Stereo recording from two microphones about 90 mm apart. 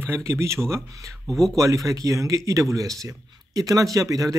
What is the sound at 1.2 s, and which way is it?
Speech, centre (ahead or behind).